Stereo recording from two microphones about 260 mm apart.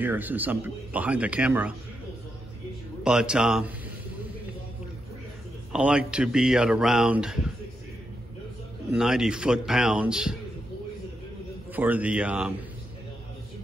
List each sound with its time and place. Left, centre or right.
0.0 s speech: centre
3.0 s speech: centre
5.7 s speech: centre
8.9 s speech: centre
11.7 s speech: centre